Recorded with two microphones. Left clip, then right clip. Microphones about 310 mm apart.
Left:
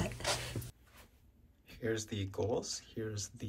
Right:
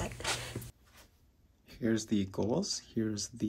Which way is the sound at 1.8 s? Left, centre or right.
Right.